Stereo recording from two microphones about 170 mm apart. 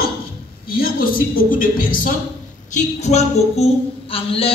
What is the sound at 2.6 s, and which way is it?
A woman's voice, 45° left (ahead or behind).